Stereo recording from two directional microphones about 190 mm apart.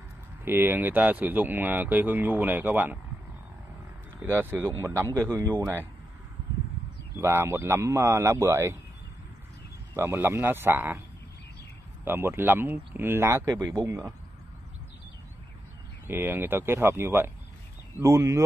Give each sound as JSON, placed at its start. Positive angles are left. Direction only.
{"t": 0.5, "sound": "speech", "side_deg": -10}
{"t": 4.2, "sound": "speech", "side_deg": -10}
{"t": 7.2, "sound": "speech", "side_deg": -15}
{"t": 9.9, "sound": "speech", "side_deg": -15}
{"t": 12.0, "sound": "speech", "side_deg": -10}
{"t": 16.1, "sound": "speech", "side_deg": -10}